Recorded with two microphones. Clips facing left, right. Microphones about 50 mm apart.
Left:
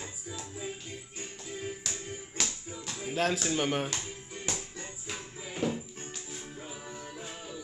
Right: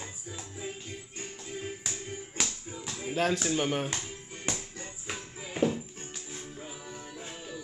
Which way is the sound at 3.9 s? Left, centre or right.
Right.